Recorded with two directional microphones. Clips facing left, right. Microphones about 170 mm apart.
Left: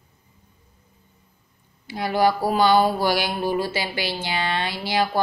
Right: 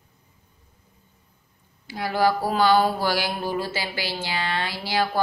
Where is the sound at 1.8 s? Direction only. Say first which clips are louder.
Left 2 dB; 20° left (ahead or behind).